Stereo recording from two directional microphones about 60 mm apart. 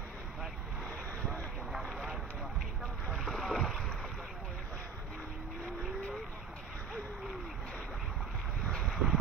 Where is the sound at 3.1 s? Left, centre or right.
Centre.